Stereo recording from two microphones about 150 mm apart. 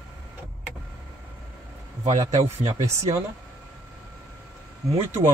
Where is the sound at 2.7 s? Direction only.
20° right (ahead or behind).